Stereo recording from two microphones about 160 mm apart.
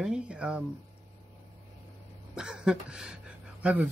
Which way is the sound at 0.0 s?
5° right (ahead or behind).